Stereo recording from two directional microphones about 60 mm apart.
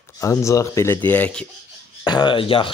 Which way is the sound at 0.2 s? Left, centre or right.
Left.